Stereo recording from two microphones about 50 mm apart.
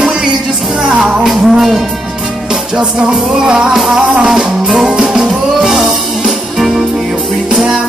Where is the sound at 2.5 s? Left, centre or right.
Centre.